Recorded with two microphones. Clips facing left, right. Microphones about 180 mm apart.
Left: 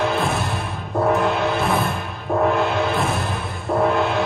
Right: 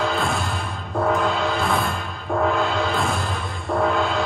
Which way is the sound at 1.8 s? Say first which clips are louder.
Left 2 dB; 5° left (ahead or behind).